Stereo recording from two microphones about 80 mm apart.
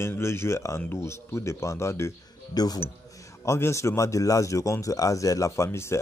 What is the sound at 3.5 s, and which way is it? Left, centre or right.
Speech, left.